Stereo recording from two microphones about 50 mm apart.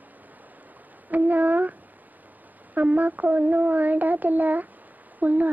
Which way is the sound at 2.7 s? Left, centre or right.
Right.